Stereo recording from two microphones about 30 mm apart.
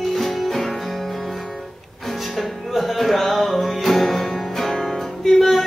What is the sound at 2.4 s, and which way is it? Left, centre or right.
Music, centre.